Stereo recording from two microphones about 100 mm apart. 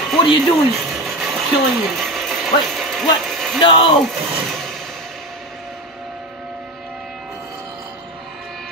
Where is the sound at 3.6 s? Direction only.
55° left (ahead or behind).